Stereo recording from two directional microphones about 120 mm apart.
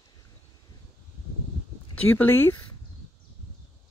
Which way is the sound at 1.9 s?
15° left (ahead or behind).